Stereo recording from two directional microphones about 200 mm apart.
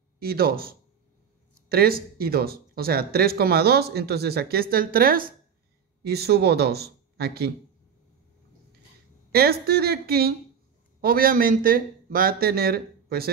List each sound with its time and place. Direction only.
0.2 s speech: 50° right (ahead or behind)
9.3 s speech: 50° right (ahead or behind)